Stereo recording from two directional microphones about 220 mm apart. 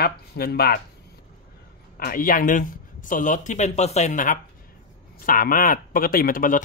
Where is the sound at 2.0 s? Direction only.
40° left (ahead or behind).